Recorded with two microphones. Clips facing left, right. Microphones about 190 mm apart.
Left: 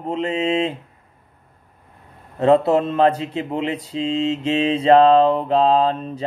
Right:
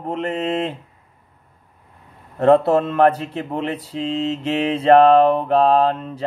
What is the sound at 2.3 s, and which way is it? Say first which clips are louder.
Speech: right 1 dB; 20° left (ahead or behind).